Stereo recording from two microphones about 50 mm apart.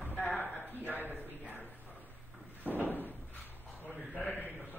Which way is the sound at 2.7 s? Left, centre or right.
Left.